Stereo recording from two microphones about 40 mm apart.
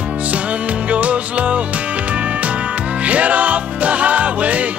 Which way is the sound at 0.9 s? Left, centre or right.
Right.